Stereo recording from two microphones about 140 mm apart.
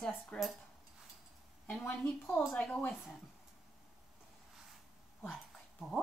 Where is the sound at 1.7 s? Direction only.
10° left (ahead or behind).